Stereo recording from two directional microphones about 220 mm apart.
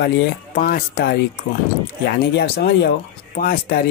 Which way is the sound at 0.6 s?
40° left (ahead or behind).